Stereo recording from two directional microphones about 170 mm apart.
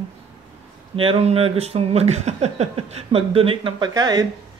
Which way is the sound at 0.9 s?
30° right (ahead or behind).